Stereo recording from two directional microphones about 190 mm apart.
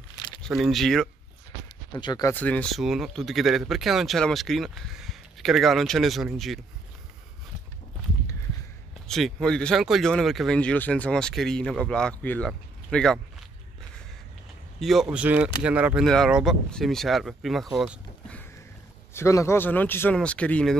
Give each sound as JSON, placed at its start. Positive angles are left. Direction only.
{"t": 0.4, "sound": "speech", "side_deg": 0}
{"t": 1.9, "sound": "speech", "side_deg": 20}
{"t": 2.3, "sound": "speech", "side_deg": 5}
{"t": 9.0, "sound": "speech", "side_deg": 0}
{"t": 14.8, "sound": "speech", "side_deg": 0}
{"t": 19.1, "sound": "speech", "side_deg": 15}